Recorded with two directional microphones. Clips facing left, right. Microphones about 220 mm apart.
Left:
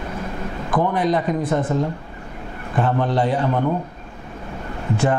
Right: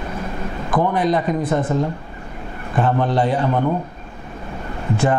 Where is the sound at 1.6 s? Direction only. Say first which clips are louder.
Right 1 dB; 25° right (ahead or behind).